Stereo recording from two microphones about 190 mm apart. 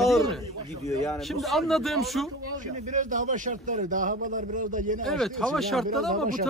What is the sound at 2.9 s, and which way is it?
A man's voice, 40° right (ahead or behind).